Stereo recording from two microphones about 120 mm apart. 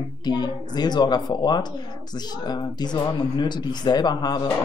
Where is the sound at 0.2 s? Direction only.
35° left (ahead or behind).